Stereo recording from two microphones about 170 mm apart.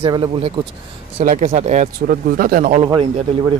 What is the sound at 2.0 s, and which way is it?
Speech, 60° right (ahead or behind).